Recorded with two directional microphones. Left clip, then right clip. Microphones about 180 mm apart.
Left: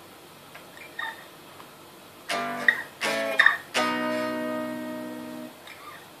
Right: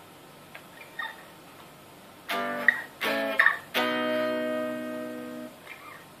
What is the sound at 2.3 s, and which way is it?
Music, 25° right (ahead or behind).